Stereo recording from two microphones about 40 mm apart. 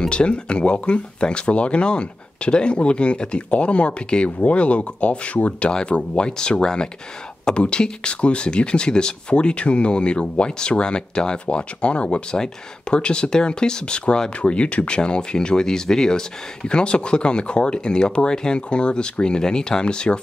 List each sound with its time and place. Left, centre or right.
0.0 s speech: left
5.7 s speech: left